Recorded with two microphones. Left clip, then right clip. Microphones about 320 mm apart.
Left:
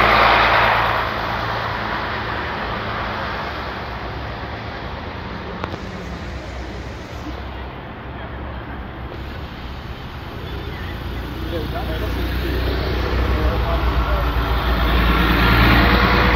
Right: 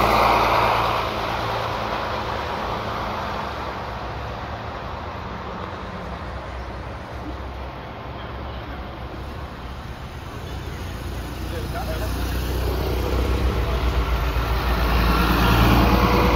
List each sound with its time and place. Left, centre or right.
0.0 s vehicle: right
12.7 s vehicle: right
14.6 s vehicle: centre; by 16.3 s right